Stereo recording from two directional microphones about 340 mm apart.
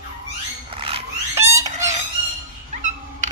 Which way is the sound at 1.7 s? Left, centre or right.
Right.